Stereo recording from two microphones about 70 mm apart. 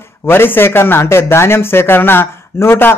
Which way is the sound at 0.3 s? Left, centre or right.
Left.